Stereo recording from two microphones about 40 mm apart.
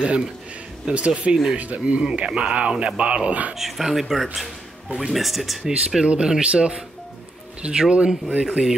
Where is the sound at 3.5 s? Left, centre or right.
Centre.